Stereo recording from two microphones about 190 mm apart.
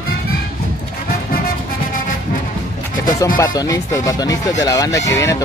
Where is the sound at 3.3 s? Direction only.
20° left (ahead or behind).